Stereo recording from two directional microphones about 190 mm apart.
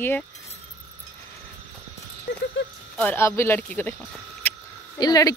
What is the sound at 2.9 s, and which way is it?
Speech, 10° left (ahead or behind).